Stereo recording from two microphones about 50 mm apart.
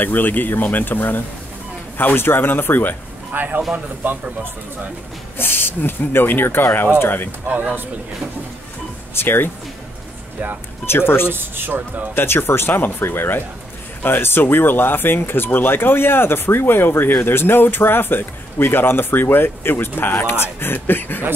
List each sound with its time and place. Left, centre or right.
0.0 s speech: left
3.3 s speech: right
5.4 s speech: left
9.1 s speech: left
10.9 s speech: left
11.2 s speech: right
12.2 s speech: left